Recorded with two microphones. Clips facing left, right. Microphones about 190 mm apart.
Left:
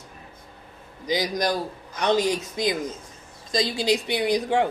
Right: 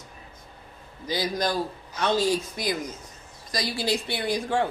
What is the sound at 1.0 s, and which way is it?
A man's voice, 15° left (ahead or behind).